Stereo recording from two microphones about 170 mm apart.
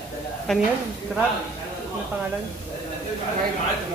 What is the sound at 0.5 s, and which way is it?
Speech, centre (ahead or behind).